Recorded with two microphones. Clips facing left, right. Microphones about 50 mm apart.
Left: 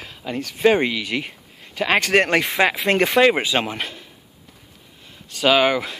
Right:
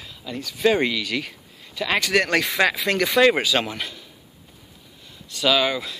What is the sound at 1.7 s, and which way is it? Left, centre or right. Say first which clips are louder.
Speech: left 3 dB; left.